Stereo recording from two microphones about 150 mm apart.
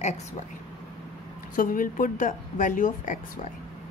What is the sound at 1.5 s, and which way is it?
A woman's voice, 65° left (ahead or behind).